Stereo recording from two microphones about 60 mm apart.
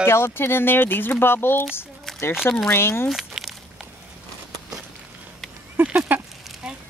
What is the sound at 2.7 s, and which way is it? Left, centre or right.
Speech, left.